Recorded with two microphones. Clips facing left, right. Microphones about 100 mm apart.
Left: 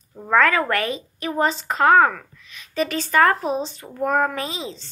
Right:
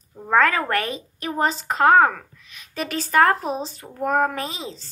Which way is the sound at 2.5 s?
45° right (ahead or behind).